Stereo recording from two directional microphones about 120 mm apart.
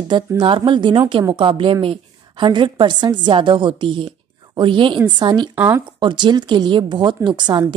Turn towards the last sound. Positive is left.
turn(degrees=-40)  # may be behind; listen again after turning